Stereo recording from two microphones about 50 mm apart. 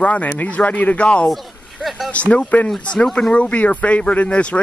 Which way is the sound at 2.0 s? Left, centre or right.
Left.